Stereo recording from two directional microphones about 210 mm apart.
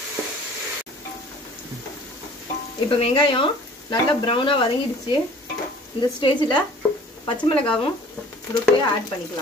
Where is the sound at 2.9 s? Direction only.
25° left (ahead or behind).